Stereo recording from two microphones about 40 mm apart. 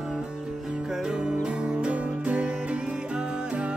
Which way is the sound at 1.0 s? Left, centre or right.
Centre.